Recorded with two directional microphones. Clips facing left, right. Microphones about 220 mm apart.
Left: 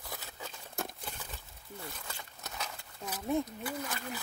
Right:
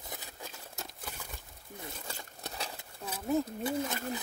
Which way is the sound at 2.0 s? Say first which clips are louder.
Right 3 dB; 30° right (ahead or behind).